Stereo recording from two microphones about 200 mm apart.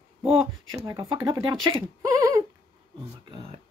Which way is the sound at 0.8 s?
20° right (ahead or behind).